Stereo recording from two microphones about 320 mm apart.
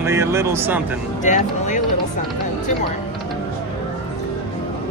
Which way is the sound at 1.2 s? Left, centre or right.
Left.